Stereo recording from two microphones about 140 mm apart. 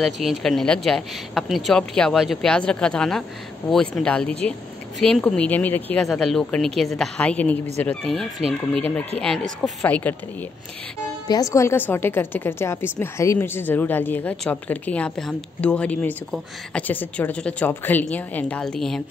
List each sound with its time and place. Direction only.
0.0 s a woman's voice: centre (ahead or behind)
11.2 s a woman's voice: 25° left (ahead or behind); by 19.0 s 5° left (ahead or behind)